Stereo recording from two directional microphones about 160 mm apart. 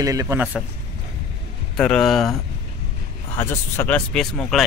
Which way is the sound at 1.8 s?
5° left (ahead or behind).